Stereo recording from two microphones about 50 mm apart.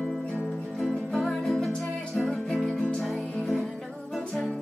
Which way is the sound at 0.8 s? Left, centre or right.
Centre.